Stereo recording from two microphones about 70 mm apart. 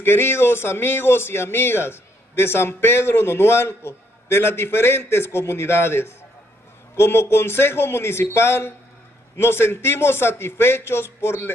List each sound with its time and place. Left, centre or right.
0.0 s speech: left